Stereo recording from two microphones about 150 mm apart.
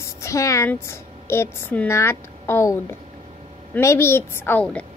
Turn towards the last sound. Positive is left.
turn(degrees=10)  # may be behind; listen again after turning